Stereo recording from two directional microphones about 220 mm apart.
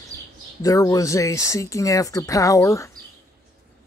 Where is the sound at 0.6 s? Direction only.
15° left (ahead or behind).